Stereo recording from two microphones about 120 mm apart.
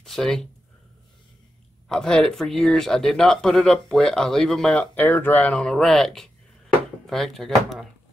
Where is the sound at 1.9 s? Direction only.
5° left (ahead or behind).